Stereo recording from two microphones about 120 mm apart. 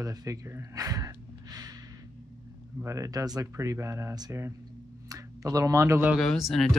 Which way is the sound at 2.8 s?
25° right (ahead or behind).